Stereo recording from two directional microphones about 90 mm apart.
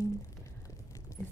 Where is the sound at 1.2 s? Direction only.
30° left (ahead or behind).